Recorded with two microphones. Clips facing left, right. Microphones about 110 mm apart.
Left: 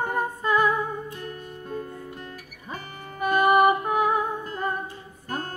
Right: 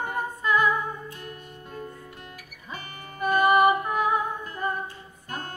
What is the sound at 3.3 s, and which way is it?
Music, 35° left (ahead or behind).